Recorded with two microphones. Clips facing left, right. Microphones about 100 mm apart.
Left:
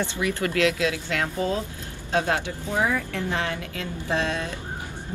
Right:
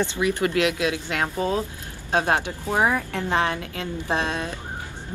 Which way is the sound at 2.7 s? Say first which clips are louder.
Right 3 dB; 60° right (ahead or behind).